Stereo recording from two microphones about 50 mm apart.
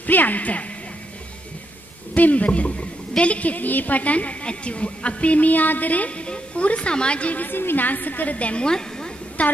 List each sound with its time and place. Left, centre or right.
0.0 s music: left
2.1 s a woman's voice: left
7.4 s a woman's voice: left
8.6 s a woman's voice: centre
9.4 s a woman's voice: left